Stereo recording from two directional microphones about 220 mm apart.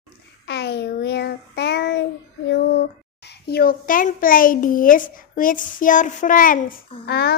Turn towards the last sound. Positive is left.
turn(degrees=45)  # may be behind; listen again after turning